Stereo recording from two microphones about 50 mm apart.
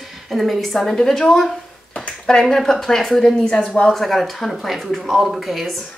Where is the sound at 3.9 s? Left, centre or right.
Centre.